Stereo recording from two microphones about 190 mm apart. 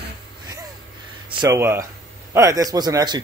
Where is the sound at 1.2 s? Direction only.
25° right (ahead or behind).